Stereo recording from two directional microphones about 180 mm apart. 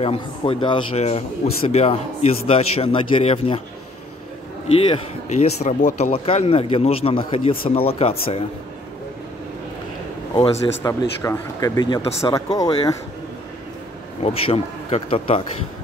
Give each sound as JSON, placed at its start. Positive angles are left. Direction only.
{"t": 0.0, "sound": "speech", "side_deg": 30}
{"t": 4.6, "sound": "speech", "side_deg": 35}
{"t": 10.8, "sound": "speech", "side_deg": 20}
{"t": 14.2, "sound": "speech", "side_deg": 35}